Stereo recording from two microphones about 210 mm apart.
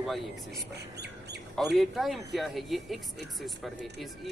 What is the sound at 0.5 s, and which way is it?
Speech, 50° right (ahead or behind).